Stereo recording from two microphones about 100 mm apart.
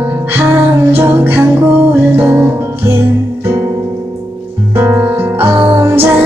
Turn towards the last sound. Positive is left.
turn(degrees=-25)  # may be behind; listen again after turning